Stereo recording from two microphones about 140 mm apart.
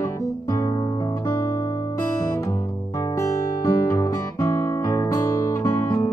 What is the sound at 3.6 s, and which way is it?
Music, 20° left (ahead or behind).